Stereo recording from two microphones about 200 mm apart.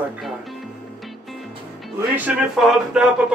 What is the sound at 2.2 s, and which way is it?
Speech, 5° right (ahead or behind).